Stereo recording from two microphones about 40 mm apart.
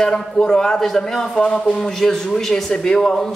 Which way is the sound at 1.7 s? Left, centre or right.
Centre.